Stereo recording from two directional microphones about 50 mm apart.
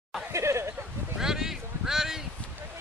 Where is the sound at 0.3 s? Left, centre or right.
Right.